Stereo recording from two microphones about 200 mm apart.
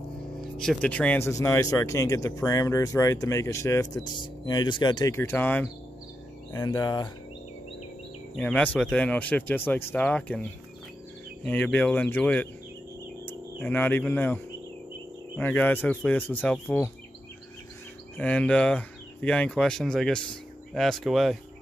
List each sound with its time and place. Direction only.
0.6 s speech: 5° left (ahead or behind); by 7.1 s 20° left (ahead or behind)
8.4 s speech: 5° left (ahead or behind)
11.4 s speech: 10° left (ahead or behind)
18.1 s speech: 5° left (ahead or behind)